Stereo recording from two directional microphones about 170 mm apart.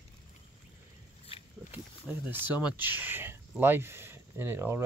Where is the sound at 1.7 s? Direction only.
10° right (ahead or behind).